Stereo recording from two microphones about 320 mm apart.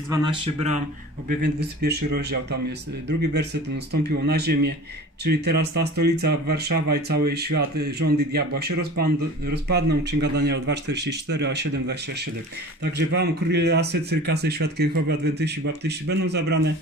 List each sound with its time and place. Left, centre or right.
0.1 s speech: centre
1.4 s speech: right